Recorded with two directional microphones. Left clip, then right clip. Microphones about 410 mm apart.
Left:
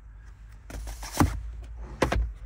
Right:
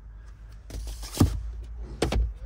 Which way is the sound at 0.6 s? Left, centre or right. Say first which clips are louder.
Left 2 dB; left.